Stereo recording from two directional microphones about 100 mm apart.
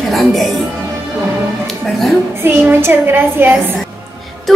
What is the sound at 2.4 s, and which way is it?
A woman's voice, 20° right (ahead or behind).